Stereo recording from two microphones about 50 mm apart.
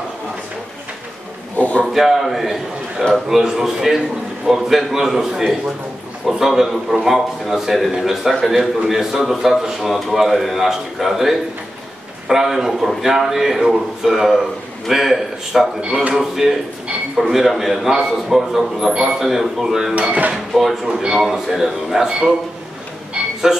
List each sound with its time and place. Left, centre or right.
1.6 s a sound: left
2.0 s a man's voice: centre
20.0 s speech: right
20.5 s a man's voice: centre